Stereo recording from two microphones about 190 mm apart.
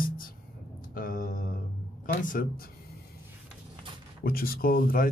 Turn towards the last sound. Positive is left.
turn(degrees=50)  # may be behind; listen again after turning